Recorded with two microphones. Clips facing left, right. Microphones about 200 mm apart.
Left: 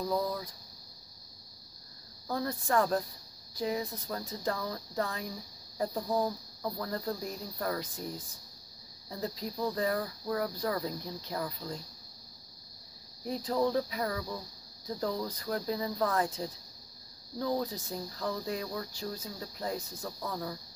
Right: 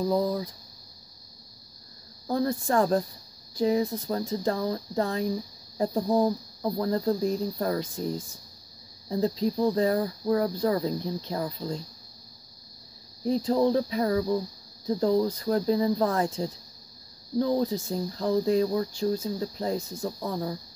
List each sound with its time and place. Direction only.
0.0 s speech: 25° right (ahead or behind)
2.2 s speech: 30° right (ahead or behind)
9.1 s speech: 25° right (ahead or behind)
13.2 s speech: 25° right (ahead or behind)